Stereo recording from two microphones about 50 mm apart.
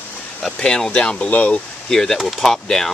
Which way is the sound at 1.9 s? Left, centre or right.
Centre.